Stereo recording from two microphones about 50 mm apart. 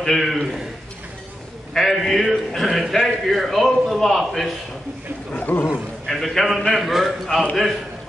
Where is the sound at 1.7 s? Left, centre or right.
Centre.